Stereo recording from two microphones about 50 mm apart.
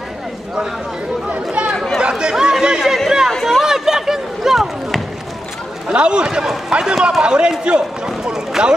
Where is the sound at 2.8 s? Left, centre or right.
Centre.